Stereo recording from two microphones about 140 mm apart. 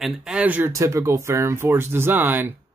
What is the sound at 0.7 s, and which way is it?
Speech, 20° right (ahead or behind).